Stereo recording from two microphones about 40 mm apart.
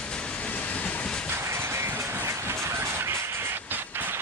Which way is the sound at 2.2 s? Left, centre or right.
Right.